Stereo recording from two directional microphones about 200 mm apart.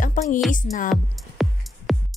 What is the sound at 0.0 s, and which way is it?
Music, 40° left (ahead or behind).